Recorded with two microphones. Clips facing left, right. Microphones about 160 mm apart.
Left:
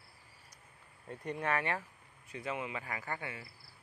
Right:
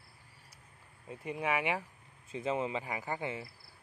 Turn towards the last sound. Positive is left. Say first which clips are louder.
# right 5 dB
turn(degrees=-25)  # may be behind; listen again after turning